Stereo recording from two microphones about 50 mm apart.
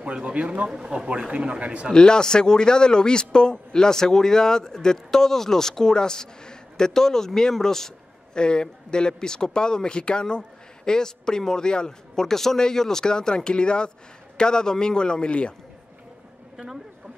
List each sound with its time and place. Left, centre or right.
0.0 s a man's voice: right
0.7 s a man's voice: centre
1.9 s a man's voice: centre
16.5 s speech: centre